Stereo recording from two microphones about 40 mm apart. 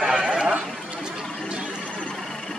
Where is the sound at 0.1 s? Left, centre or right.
Right.